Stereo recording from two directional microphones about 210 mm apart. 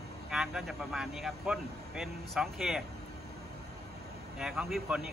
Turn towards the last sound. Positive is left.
turn(degrees=-5)  # may be behind; listen again after turning